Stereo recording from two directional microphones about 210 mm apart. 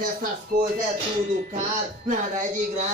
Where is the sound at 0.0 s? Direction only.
40° right (ahead or behind).